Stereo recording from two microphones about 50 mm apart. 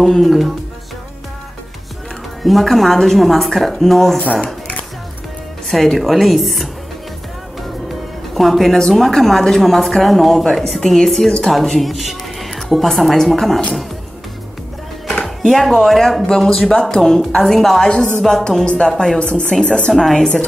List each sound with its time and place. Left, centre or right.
0.0 s speech: centre
2.4 s speech: centre
5.7 s speech: centre
8.4 s a woman's voice: centre
15.0 s a woman's voice: centre
20.0 s a woman's voice: centre